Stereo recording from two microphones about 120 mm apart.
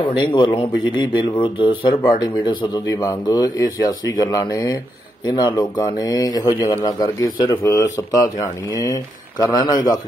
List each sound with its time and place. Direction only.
0.4 s speech: 45° left (ahead or behind)